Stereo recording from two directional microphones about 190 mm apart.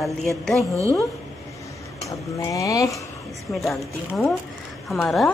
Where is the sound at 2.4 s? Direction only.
15° left (ahead or behind).